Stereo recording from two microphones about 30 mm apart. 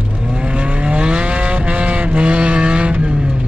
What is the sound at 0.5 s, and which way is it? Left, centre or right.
Vehicle, right.